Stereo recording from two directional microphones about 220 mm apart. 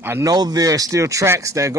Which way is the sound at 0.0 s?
15° right (ahead or behind).